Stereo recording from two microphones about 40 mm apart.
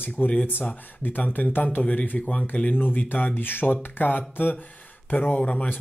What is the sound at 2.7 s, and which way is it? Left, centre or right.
Speech, left.